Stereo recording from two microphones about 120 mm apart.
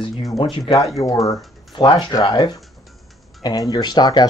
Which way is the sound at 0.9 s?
30° left (ahead or behind).